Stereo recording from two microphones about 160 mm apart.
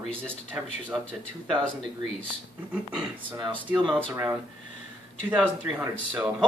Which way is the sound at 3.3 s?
30° right (ahead or behind).